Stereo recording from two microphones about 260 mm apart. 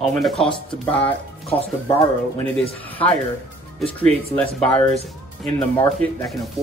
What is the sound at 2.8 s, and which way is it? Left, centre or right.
A man's voice, centre.